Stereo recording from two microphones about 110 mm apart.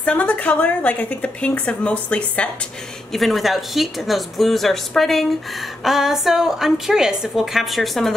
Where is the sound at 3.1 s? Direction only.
Centre (ahead or behind).